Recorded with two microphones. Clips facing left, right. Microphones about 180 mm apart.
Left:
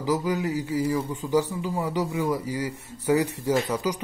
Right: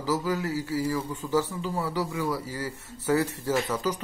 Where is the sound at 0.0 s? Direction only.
15° left (ahead or behind).